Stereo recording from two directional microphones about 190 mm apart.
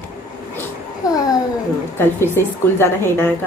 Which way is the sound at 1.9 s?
10° left (ahead or behind).